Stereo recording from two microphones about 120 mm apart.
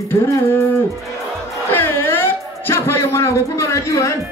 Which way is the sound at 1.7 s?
20° left (ahead or behind).